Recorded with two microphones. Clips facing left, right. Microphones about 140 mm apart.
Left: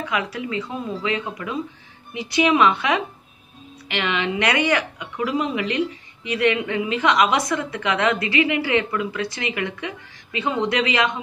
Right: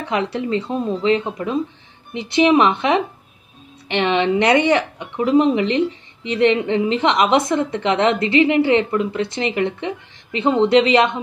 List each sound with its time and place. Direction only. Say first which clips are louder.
0.0 s a woman's voice: right 4 dB; 30° right (ahead or behind)